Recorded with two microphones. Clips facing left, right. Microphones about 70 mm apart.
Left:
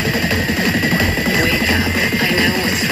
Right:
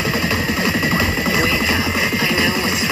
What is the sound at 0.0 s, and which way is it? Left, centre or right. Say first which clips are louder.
Music: left 1 dB; right.